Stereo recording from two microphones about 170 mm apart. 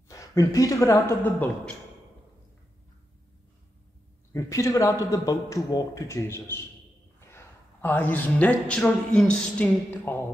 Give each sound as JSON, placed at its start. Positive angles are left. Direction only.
{"t": 0.1, "sound": "speech", "side_deg": 20}
{"t": 4.3, "sound": "a man's voice", "side_deg": 20}